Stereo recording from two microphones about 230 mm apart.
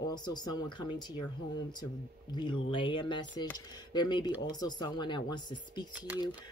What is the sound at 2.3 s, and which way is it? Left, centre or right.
Speech, left.